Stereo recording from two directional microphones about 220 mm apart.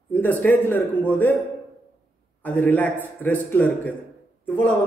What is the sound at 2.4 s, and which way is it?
A man's voice, 10° left (ahead or behind).